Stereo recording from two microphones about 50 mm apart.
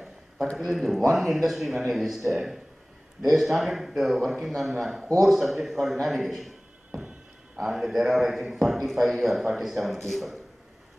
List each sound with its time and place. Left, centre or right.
0.6 s a man's voice: centre
7.5 s a man's voice: centre